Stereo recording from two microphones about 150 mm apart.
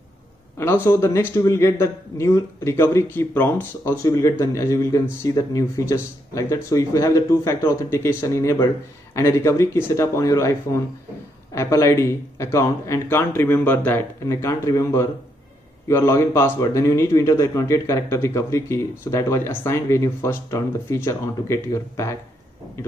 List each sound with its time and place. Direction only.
0.6 s a man's voice: 15° left (ahead or behind)